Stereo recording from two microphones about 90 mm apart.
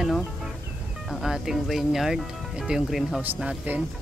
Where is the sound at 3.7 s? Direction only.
20° right (ahead or behind).